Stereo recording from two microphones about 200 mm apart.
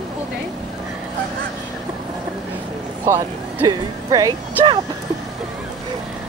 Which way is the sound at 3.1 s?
15° right (ahead or behind).